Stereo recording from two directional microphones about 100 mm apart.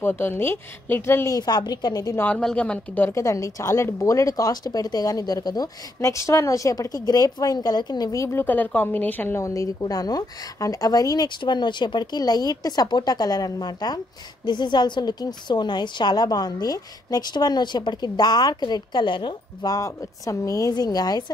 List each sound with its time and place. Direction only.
0.0 s speech: 20° left (ahead or behind)
1.3 s a woman's voice: 45° left (ahead or behind)
2.1 s speech: 15° left (ahead or behind)
3.1 s a woman's voice: 30° left (ahead or behind)
5.9 s a woman's voice: 30° left (ahead or behind); by 19.3 s 55° left (ahead or behind)
19.6 s a woman's voice: 35° left (ahead or behind)